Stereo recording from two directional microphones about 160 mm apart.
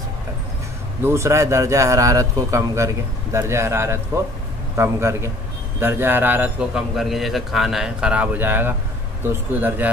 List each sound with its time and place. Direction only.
1.0 s a man's voice: 15° right (ahead or behind)